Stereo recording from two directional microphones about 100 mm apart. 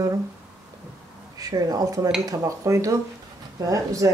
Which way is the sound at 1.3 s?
35° right (ahead or behind).